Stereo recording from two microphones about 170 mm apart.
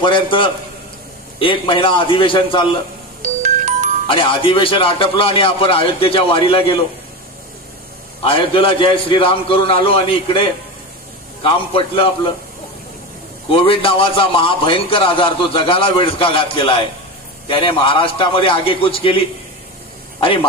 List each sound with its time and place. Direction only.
0.0 s a man's voice: 30° left (ahead or behind)
3.4 s music: 45° right (ahead or behind)
4.1 s a man's voice: 30° left (ahead or behind)
8.2 s a man's voice: 30° left (ahead or behind)
11.4 s a man's voice: 30° left (ahead or behind)
13.5 s a man's voice: 30° left (ahead or behind)